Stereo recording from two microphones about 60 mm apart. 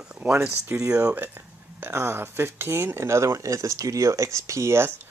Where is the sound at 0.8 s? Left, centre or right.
Right.